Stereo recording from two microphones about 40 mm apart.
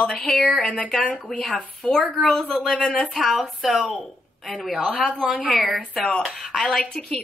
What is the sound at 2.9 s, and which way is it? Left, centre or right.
Speech, centre.